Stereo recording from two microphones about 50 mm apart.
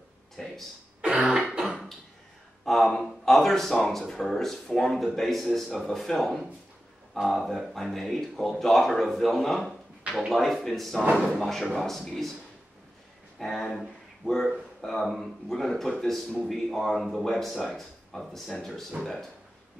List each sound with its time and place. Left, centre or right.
0.4 s a sound: centre
1.0 s throat clearing: centre
1.5 s beatboxing: centre
2.6 s a sound: centre
4.1 s speech: centre
13.4 s speech: centre
18.7 s speech: centre